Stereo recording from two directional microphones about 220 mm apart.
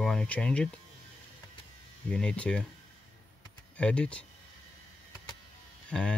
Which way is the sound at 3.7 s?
5° left (ahead or behind).